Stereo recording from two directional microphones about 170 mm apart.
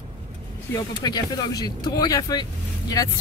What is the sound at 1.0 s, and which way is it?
Speech, 25° left (ahead or behind).